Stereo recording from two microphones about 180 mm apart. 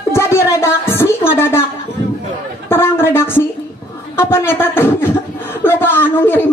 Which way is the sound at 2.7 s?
15° left (ahead or behind).